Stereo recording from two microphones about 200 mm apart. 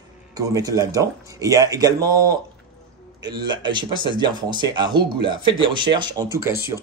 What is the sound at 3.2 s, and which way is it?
Speech, 20° right (ahead or behind).